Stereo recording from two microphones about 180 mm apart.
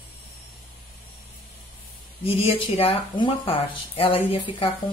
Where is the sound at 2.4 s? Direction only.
30° left (ahead or behind).